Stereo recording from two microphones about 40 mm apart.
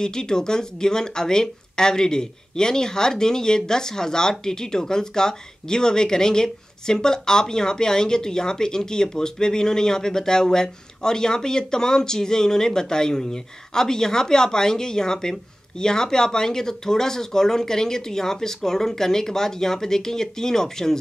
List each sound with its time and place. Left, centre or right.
0.0 s speech: centre